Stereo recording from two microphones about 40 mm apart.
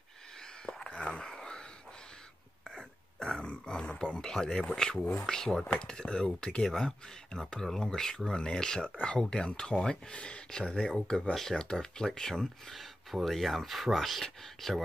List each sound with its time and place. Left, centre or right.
0.8 s a sound: left
1.2 s a sound: centre
2.7 s throat clearing: centre
5.2 s speech: centre
8.3 s speech: left
10.8 s speech: centre
12.7 s speech: centre